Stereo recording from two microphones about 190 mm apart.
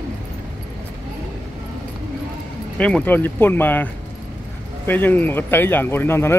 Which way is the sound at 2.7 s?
5° left (ahead or behind).